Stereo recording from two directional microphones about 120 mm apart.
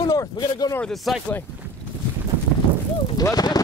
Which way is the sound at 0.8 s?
Centre (ahead or behind).